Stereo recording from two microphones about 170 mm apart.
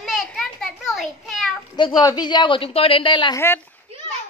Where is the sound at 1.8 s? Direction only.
25° left (ahead or behind).